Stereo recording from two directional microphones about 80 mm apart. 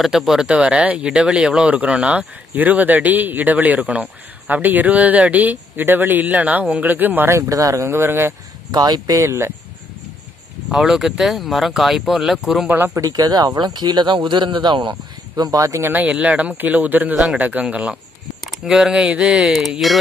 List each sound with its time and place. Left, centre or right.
0.0 s speech: centre; by 8.4 s right
8.7 s speech: right
10.7 s speech: centre
12.6 s speech: right
13.0 s speech: right
15.9 s a man's voice: centre